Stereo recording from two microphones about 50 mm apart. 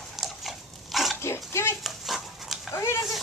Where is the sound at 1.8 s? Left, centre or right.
Centre.